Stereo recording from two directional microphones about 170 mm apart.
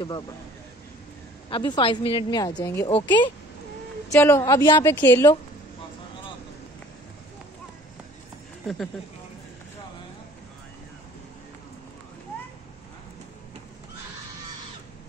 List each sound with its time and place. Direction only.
1.5 s a woman's voice: 30° left (ahead or behind)
2.9 s a woman's voice: 30° left (ahead or behind)
4.1 s a woman's voice: 15° left (ahead or behind)